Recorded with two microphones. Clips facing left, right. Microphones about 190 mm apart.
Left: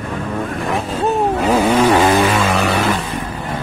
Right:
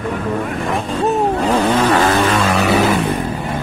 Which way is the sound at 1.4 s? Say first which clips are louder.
Left 1 dB; 10° left (ahead or behind).